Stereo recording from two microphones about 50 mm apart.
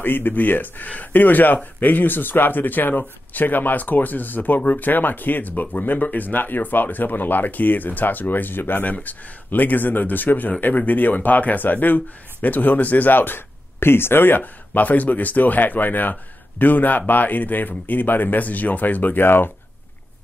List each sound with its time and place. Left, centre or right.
0.0 s speech: left